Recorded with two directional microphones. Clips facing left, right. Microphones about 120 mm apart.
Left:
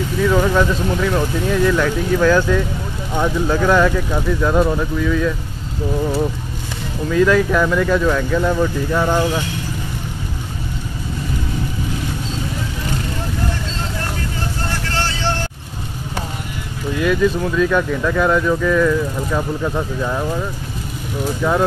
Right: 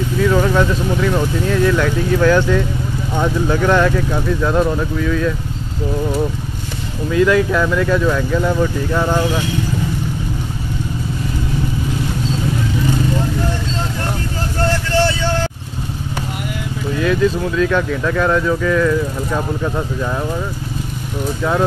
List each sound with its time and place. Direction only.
0.2 s speech: 5° left (ahead or behind)
7.1 s speech: 5° right (ahead or behind)
17.0 s speech: centre (ahead or behind)
21.4 s speech: centre (ahead or behind)